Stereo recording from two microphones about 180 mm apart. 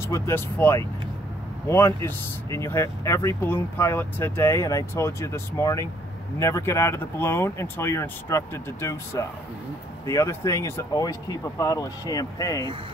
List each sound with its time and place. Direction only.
0.1 s speech: 15° left (ahead or behind)